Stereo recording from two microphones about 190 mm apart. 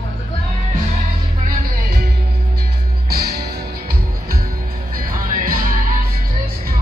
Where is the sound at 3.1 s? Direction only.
55° right (ahead or behind).